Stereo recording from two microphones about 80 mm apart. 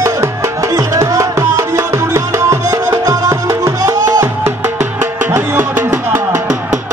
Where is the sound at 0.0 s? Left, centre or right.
Right.